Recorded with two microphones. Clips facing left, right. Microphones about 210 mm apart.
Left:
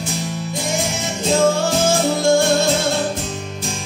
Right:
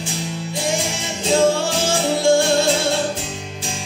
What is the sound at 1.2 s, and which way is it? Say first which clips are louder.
Music: even; 40° left (ahead or behind).